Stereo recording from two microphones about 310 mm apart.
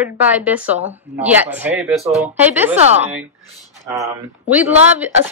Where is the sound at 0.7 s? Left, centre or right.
Right.